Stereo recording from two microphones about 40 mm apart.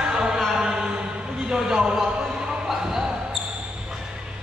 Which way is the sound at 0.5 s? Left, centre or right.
Centre.